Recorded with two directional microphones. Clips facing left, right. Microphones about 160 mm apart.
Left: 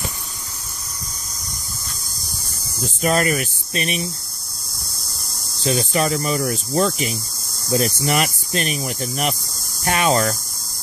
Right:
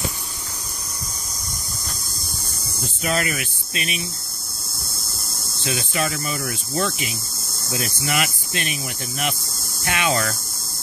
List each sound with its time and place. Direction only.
3.0 s speech: 45° left (ahead or behind)
5.6 s speech: 40° left (ahead or behind)
9.8 s speech: 40° left (ahead or behind)